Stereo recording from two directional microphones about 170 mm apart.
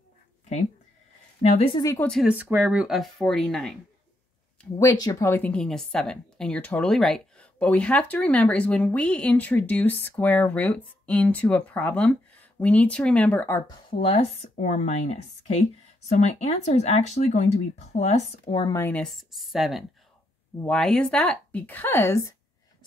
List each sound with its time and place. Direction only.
1.6 s speech: 25° left (ahead or behind)
2.0 s speech: 5° left (ahead or behind)
2.2 s speech: 10° right (ahead or behind)
4.7 s speech: 20° left (ahead or behind)
13.8 s speech: 35° left (ahead or behind)
18.7 s speech: 10° left (ahead or behind)